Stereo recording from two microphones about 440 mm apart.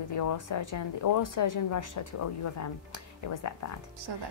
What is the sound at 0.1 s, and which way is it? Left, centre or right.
A woman's voice, left.